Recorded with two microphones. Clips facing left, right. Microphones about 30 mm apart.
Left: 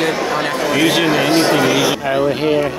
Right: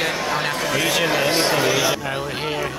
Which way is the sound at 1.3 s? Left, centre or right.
Centre.